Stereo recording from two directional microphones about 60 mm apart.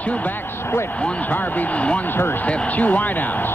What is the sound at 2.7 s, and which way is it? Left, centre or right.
Speech, left.